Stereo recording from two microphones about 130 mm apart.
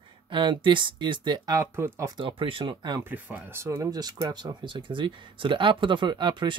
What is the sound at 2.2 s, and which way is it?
Speech, 40° right (ahead or behind).